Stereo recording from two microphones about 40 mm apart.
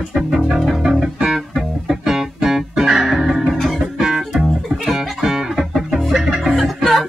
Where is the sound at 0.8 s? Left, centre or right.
Centre.